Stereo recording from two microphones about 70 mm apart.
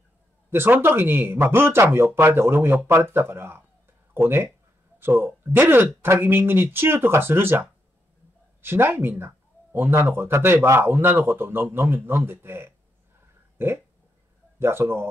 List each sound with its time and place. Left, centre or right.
0.5 s a man's voice: right